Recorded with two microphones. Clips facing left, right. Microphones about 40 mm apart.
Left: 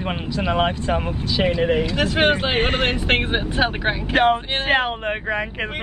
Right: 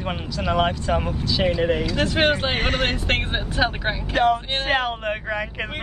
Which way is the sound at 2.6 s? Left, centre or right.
Left.